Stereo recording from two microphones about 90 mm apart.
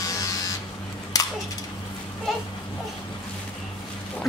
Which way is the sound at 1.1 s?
45° left (ahead or behind).